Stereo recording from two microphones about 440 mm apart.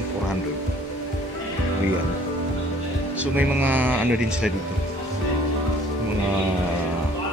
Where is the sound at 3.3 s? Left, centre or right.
Centre.